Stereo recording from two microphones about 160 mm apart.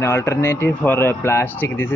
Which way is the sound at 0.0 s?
15° left (ahead or behind).